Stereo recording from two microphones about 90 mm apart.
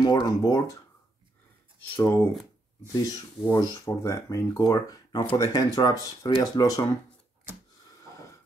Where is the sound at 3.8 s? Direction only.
30° left (ahead or behind).